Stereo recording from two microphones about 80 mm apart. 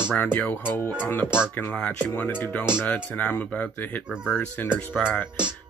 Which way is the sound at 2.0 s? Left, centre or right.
Left.